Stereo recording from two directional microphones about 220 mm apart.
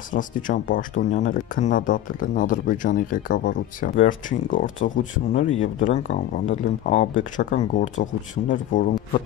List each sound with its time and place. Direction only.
0.1 s speech: 35° left (ahead or behind)